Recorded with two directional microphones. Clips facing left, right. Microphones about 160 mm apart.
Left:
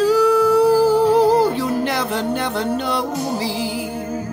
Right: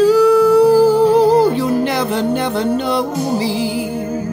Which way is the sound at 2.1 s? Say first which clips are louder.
Right 4 dB; 10° right (ahead or behind).